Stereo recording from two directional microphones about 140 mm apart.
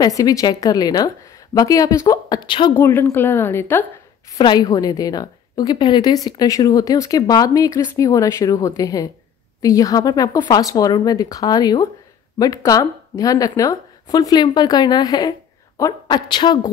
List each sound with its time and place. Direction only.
0.0 s a woman's voice: 25° left (ahead or behind)
2.8 s a woman's voice: 15° left (ahead or behind)
4.4 s a woman's voice: 30° left (ahead or behind)